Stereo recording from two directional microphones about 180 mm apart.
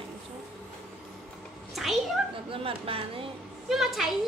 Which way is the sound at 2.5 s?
30° right (ahead or behind).